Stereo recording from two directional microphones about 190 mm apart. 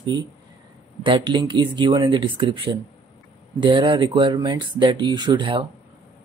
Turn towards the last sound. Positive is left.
turn(degrees=-25)  # may be behind; listen again after turning